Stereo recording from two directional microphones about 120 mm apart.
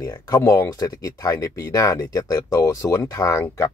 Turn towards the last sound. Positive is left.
turn(degrees=30)  # may be behind; listen again after turning